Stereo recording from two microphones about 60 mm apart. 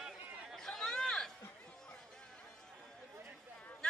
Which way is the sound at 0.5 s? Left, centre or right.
Centre.